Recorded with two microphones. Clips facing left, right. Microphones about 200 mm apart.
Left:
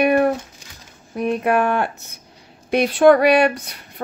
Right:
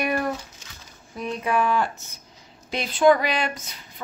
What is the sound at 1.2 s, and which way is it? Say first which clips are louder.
Speech: left 6 dB; 60° left (ahead or behind).